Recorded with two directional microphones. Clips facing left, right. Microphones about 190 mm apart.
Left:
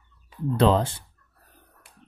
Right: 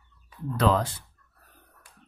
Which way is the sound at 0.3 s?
25° left (ahead or behind).